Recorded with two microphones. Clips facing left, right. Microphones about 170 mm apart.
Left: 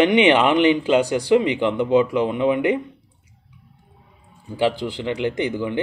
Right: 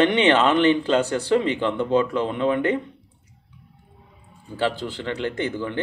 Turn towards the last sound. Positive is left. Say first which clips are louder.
# left 3 dB
turn(degrees=15)  # may be behind; listen again after turning